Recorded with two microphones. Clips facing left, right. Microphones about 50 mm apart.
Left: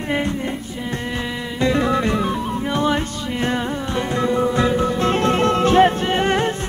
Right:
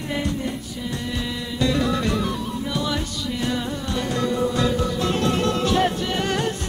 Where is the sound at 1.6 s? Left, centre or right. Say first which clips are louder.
Left 4 dB; left.